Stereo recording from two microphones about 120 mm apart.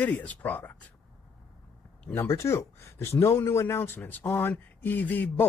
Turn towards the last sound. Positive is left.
turn(degrees=15)  # may be behind; listen again after turning